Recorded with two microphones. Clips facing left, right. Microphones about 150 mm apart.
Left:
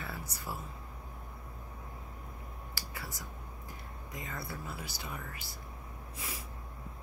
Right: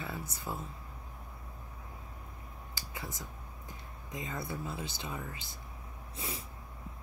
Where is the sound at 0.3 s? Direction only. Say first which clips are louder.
Right 2 dB; 20° right (ahead or behind).